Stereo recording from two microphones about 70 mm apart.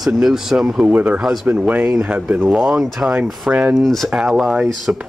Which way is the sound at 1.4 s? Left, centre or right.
Centre.